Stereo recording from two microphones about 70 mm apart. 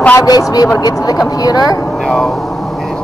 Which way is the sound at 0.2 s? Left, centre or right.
Left.